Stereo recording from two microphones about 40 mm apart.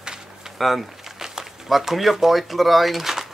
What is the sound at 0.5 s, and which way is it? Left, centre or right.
Speech, centre.